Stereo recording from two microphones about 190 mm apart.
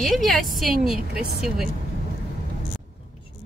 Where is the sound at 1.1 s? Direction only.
50° right (ahead or behind).